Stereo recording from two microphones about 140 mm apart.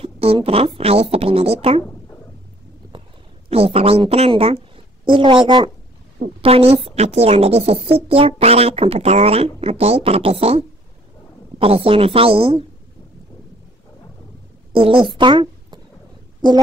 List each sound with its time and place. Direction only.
0.0 s a woman's voice: 45° right (ahead or behind)
3.4 s a woman's voice: 45° right (ahead or behind)
14.7 s a woman's voice: 40° right (ahead or behind)
15.1 s a sound: 35° right (ahead or behind)